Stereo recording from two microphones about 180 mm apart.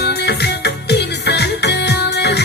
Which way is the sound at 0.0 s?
65° left (ahead or behind).